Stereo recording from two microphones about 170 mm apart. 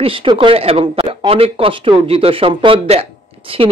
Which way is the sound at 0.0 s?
30° right (ahead or behind).